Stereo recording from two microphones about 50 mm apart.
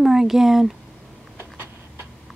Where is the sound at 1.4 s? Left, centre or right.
Right.